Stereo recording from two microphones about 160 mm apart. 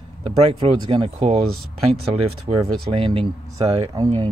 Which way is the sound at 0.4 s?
40° right (ahead or behind).